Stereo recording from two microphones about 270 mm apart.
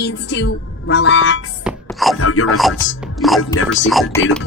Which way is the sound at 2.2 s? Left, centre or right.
Left.